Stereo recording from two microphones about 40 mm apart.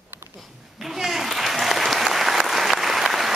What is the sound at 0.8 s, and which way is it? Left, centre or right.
Applause, centre.